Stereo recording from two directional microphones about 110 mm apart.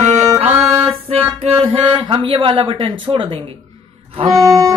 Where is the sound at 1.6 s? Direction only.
50° right (ahead or behind).